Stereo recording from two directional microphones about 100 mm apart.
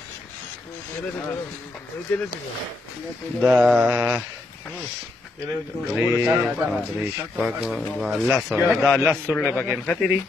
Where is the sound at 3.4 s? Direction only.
15° right (ahead or behind).